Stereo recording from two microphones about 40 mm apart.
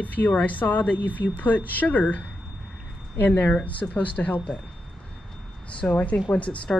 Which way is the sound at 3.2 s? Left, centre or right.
Left.